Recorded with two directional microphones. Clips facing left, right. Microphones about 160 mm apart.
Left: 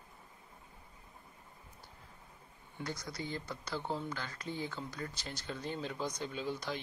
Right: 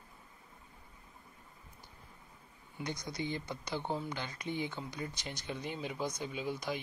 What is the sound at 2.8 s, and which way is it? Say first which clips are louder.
Speech: right 2 dB; 20° right (ahead or behind).